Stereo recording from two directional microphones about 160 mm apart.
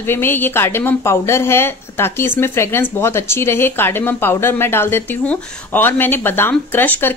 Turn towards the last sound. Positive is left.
turn(degrees=10)  # may be behind; listen again after turning